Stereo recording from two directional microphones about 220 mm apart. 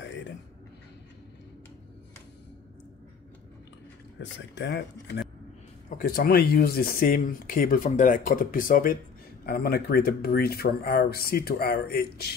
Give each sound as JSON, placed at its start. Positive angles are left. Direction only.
{"t": 4.2, "sound": "speech", "side_deg": 55}
{"t": 5.9, "sound": "speech", "side_deg": 40}